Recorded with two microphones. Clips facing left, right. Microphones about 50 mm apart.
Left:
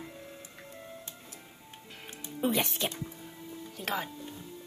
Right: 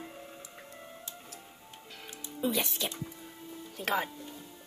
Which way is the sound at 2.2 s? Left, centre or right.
Left.